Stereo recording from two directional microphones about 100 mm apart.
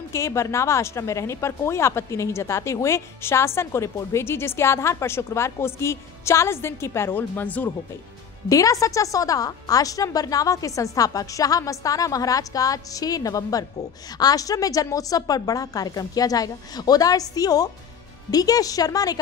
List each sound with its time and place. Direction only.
0.1 s speech: 30° left (ahead or behind)
8.5 s a woman's voice: 35° left (ahead or behind)